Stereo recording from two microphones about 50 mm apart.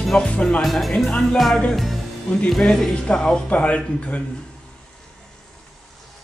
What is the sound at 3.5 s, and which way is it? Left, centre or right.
Speech, left.